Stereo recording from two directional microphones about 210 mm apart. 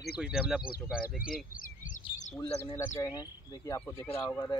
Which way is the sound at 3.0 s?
15° left (ahead or behind).